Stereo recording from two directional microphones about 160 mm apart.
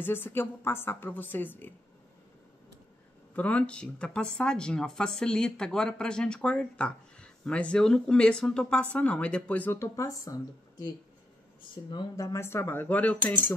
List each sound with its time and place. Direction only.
0.0 s speech: 15° left (ahead or behind)
3.3 s speech: 10° left (ahead or behind)